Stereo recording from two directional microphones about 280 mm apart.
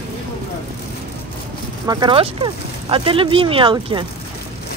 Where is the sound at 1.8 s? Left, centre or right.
Centre.